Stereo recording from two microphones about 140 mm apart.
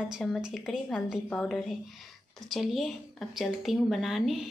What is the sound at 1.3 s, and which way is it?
Speech, 10° left (ahead or behind).